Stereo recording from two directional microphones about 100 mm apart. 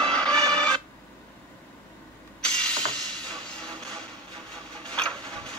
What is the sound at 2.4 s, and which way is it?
Ratchet, 10° left (ahead or behind).